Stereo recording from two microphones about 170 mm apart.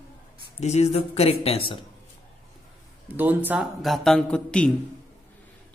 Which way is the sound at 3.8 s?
Centre (ahead or behind).